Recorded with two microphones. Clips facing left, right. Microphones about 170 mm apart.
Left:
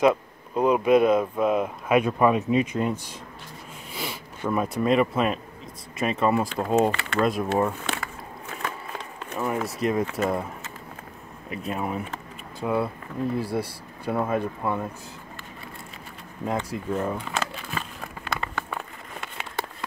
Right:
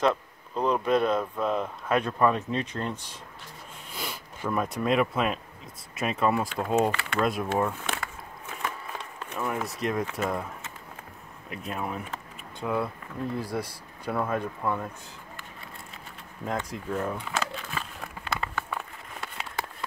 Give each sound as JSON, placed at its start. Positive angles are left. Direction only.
{"t": 0.0, "sound": "speech", "side_deg": 10}
{"t": 3.9, "sound": "a sound", "side_deg": 5}
{"t": 4.5, "sound": "speech", "side_deg": 0}
{"t": 9.3, "sound": "speech", "side_deg": 10}
{"t": 11.5, "sound": "speech", "side_deg": 5}
{"t": 16.4, "sound": "speech", "side_deg": 5}
{"t": 18.3, "sound": "a sound", "side_deg": -5}